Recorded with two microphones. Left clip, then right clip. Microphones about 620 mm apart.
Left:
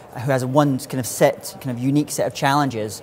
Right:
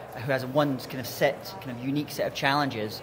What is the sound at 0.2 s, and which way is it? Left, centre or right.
Speech, left.